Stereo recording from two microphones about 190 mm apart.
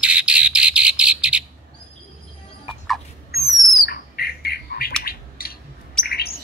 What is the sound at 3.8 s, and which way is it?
Bird, 55° left (ahead or behind).